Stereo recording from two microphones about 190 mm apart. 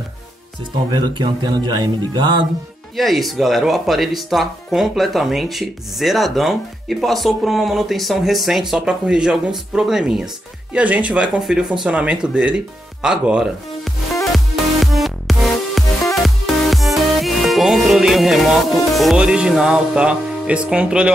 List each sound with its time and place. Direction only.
0.9 s speech: 20° right (ahead or behind)
3.0 s speech: centre (ahead or behind)
14.2 s music: centre (ahead or behind)